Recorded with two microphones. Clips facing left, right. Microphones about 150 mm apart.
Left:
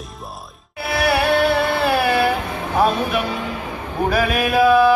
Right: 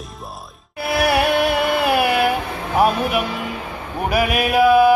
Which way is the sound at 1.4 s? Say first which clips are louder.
Even; 15° right (ahead or behind).